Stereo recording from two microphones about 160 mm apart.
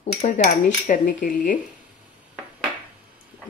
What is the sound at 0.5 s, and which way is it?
Cutlery, 60° left (ahead or behind).